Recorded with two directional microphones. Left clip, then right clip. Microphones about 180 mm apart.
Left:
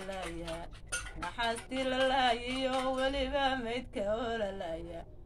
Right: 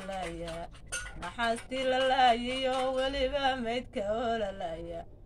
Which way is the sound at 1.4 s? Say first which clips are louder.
Right 5 dB; 15° left (ahead or behind).